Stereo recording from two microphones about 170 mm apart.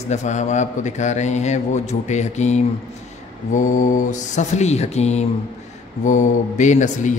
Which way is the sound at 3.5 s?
50° left (ahead or behind).